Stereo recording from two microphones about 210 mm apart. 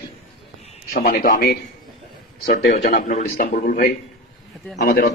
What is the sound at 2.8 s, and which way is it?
A man's voice, 40° left (ahead or behind).